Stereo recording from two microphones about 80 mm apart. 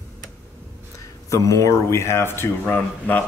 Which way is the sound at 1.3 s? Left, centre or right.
Left.